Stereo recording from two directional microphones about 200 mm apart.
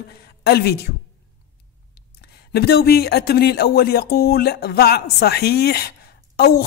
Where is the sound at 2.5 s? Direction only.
55° left (ahead or behind).